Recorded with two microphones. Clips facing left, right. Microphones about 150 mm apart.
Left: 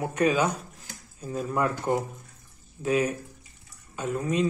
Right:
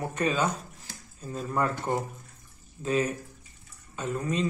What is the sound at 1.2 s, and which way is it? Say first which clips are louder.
A man's voice: left 2 dB; 10° left (ahead or behind).